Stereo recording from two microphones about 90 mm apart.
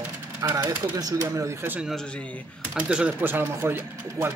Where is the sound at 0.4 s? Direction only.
45° right (ahead or behind).